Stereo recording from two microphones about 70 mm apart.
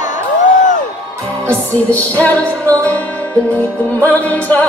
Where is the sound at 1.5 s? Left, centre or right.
Left.